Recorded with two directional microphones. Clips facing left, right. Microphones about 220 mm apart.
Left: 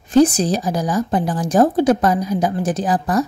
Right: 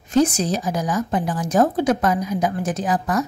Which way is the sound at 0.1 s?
35° left (ahead or behind).